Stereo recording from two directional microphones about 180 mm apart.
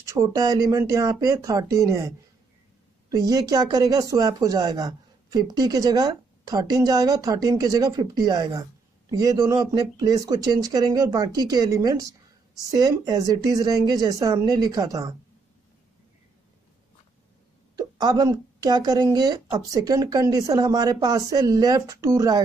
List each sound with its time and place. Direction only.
0.0 s speech: 15° right (ahead or behind)
17.7 s speech: 25° right (ahead or behind)